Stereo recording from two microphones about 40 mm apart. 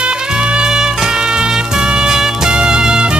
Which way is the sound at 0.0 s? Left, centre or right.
Right.